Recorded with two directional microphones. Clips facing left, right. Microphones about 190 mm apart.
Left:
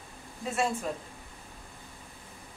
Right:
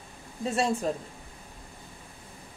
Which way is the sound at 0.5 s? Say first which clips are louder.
Right 3 dB; 35° right (ahead or behind).